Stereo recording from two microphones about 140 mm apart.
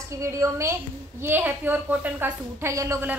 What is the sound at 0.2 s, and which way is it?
A woman's voice, 20° right (ahead or behind).